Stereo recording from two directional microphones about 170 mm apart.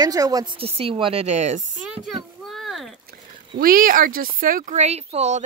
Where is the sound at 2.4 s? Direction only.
Centre (ahead or behind).